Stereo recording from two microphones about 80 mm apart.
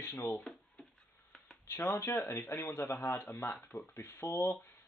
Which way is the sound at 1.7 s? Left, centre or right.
Left.